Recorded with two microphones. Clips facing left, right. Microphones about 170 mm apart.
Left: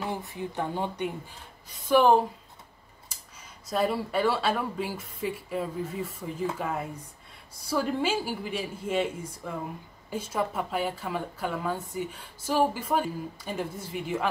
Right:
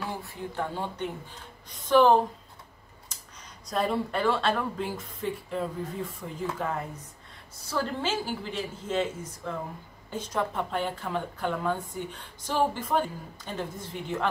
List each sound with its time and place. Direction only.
0.0 s a woman's voice: 20° left (ahead or behind)
3.6 s a woman's voice: 5° left (ahead or behind)